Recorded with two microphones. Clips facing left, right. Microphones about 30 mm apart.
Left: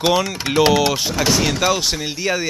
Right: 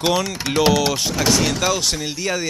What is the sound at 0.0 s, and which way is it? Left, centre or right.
Speech, centre.